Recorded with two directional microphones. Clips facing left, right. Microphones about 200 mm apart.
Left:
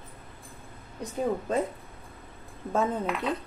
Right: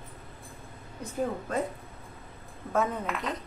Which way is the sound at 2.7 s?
25° left (ahead or behind).